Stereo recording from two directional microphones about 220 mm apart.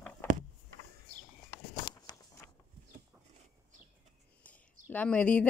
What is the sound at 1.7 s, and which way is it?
Walk, 20° left (ahead or behind).